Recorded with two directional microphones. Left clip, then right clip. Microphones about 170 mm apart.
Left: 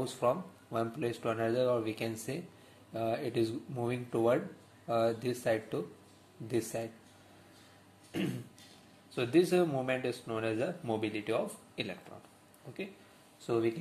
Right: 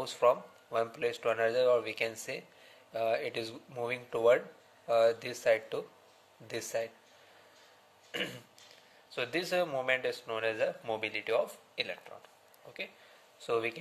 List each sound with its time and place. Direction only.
0.0 s speech: 35° right (ahead or behind)
8.1 s throat clearing: 35° right (ahead or behind)
9.1 s speech: 35° right (ahead or behind)
13.4 s speech: 45° right (ahead or behind)